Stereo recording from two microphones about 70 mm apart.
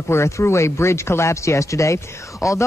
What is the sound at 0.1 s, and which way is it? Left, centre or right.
Speech, left.